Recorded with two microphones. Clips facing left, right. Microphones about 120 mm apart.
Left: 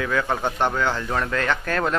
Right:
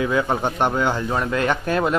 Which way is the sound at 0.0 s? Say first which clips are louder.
Right 3 dB; 15° right (ahead or behind).